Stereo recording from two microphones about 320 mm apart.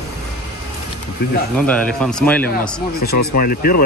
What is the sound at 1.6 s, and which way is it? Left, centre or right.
Speech, centre.